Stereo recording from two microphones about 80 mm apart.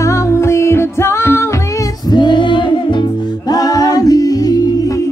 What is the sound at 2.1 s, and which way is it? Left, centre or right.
Music, left.